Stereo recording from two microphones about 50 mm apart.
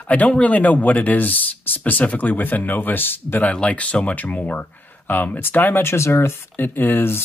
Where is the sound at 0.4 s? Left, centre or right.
Left.